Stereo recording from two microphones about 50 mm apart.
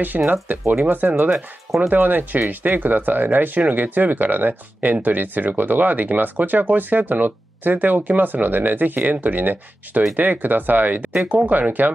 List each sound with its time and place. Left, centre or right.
0.3 s speech: right